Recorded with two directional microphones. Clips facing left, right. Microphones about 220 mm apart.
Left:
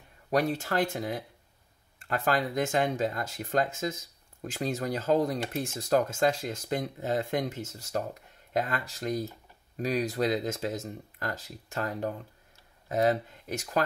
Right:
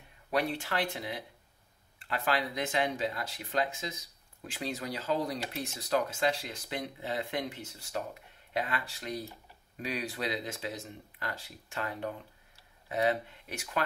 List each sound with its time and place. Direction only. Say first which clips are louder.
0.3 s speech: left 4 dB; 45° left (ahead or behind)